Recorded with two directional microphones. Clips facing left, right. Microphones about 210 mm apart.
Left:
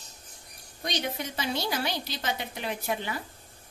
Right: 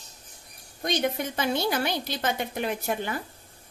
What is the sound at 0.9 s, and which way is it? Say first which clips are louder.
A woman's voice: right 6 dB; 50° right (ahead or behind).